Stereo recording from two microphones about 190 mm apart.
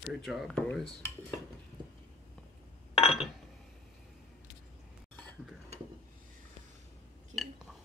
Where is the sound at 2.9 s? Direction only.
30° left (ahead or behind).